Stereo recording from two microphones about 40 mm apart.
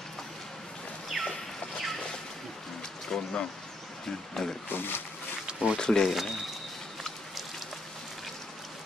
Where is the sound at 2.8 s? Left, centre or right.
Centre.